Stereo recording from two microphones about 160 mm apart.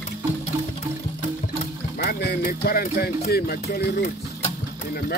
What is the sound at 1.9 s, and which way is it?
Speech, 80° left.